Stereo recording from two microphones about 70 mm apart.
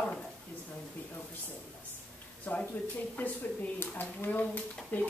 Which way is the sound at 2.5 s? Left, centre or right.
Left.